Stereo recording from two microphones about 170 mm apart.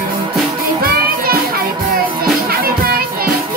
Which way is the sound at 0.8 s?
60° right (ahead or behind).